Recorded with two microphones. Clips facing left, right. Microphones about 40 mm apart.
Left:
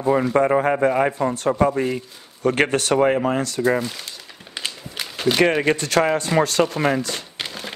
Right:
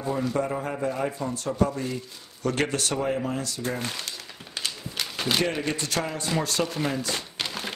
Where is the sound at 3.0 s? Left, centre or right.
Left.